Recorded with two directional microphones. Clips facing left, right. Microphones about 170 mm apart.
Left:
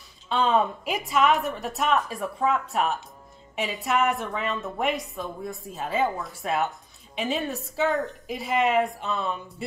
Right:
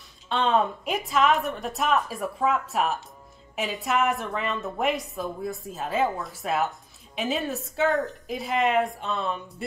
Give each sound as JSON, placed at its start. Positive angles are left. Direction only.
{"t": 0.3, "sound": "a woman's voice", "side_deg": 0}